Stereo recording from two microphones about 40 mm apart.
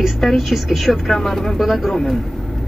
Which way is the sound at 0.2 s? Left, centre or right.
Centre.